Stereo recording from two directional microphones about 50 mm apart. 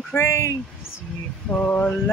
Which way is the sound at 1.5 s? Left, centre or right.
Left.